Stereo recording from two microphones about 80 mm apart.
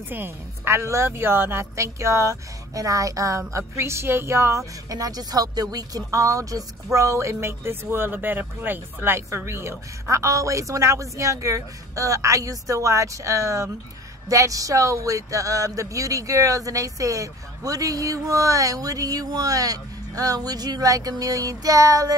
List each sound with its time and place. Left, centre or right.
0.1 s a woman's voice: right